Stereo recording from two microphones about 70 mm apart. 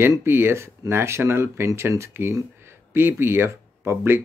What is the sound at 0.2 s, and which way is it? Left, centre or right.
Speech, right.